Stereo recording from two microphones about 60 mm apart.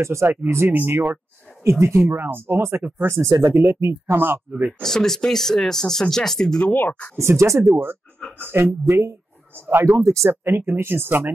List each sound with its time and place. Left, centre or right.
0.0 s speech: right
1.6 s speech: right
3.1 s speech: right
4.8 s speech: centre
6.7 s speech: left
7.2 s speech: right
10.0 s speech: right